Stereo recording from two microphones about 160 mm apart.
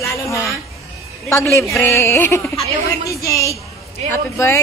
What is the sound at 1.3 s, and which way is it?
A woman's voice, 15° left (ahead or behind).